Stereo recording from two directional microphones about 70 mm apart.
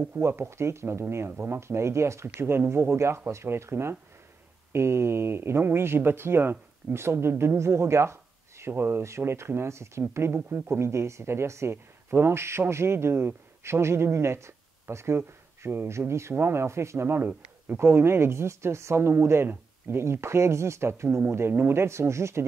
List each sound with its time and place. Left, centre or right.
0.2 s speech: right